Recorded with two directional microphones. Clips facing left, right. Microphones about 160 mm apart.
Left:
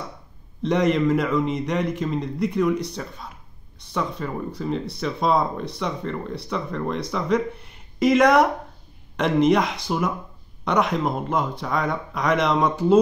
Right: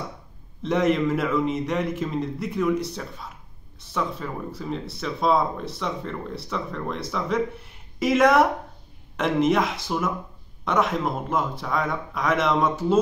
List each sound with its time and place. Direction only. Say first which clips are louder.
0.6 s speech: left 1 dB; 5° right (ahead or behind)